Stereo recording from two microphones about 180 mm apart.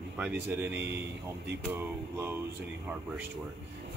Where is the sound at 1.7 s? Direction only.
10° right (ahead or behind).